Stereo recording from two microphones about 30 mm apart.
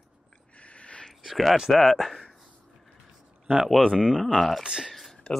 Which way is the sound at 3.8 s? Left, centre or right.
Left.